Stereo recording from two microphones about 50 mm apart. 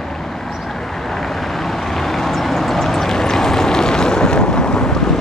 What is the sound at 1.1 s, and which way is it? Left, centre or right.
Vehicle, centre.